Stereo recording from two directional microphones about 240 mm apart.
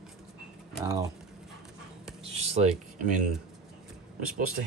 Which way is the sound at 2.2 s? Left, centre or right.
Right.